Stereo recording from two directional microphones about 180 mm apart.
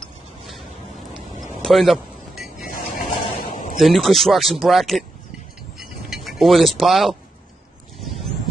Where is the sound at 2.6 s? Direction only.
50° left (ahead or behind).